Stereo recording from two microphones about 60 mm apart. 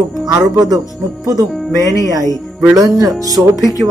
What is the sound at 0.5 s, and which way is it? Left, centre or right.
Speech, right.